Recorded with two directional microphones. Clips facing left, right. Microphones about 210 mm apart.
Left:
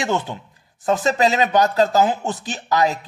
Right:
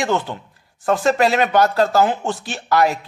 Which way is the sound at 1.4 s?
20° left (ahead or behind).